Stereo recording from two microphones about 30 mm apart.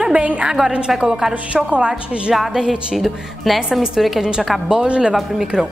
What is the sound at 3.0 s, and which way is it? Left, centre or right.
A woman's voice, centre.